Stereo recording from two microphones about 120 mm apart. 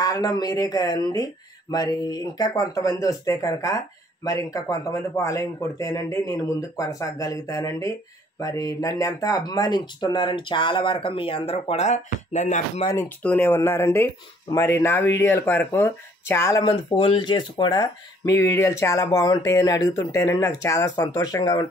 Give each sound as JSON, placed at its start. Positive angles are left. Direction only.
{"t": 0.0, "sound": "speech", "side_deg": 30}
{"t": 12.9, "sound": "speech", "side_deg": 15}
{"t": 16.6, "sound": "speech", "side_deg": 40}